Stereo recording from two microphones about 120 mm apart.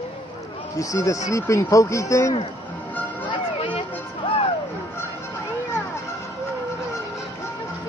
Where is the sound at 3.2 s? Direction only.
45° left (ahead or behind).